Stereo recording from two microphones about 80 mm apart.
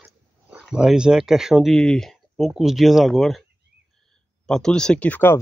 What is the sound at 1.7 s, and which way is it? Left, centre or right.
Speech, centre.